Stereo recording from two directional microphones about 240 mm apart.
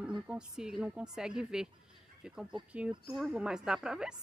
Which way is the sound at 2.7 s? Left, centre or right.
Centre.